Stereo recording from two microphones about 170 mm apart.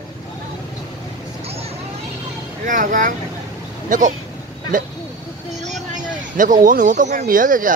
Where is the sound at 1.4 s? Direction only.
35° right (ahead or behind).